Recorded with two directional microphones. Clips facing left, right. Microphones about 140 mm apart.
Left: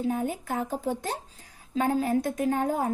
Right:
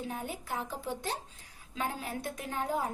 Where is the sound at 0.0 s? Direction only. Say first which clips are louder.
Left 10 dB; 45° left (ahead or behind).